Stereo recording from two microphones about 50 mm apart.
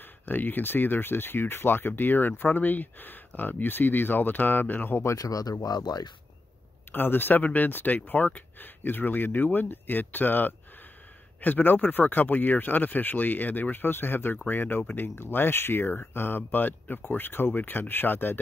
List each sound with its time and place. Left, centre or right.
0.3 s speech: left
6.9 s speech: left